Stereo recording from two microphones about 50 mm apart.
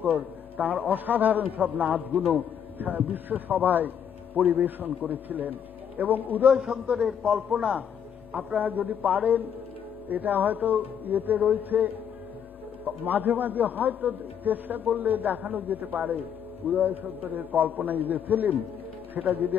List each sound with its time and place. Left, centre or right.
0.0 s a man's voice: right
6.5 s a man's voice: centre
7.2 s a man's voice: right